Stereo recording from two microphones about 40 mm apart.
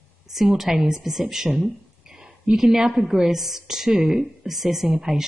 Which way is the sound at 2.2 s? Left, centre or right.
Centre.